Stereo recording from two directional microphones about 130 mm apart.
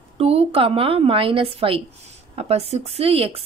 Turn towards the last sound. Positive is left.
turn(degrees=-50)  # may be behind; listen again after turning